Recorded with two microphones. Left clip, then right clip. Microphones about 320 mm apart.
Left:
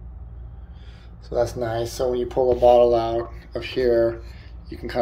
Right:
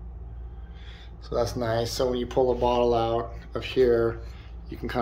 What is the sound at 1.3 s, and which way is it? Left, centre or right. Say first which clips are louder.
Speech: left 3 dB; centre.